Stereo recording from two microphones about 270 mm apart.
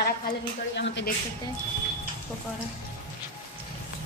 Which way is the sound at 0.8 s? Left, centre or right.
Left.